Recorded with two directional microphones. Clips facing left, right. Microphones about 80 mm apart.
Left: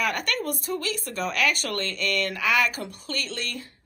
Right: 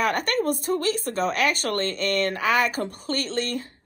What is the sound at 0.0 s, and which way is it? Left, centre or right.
A woman's voice, right.